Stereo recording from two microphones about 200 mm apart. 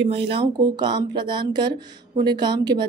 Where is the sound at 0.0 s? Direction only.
25° right (ahead or behind).